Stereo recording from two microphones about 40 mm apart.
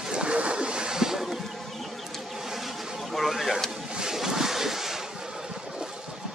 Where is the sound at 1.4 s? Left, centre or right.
Centre.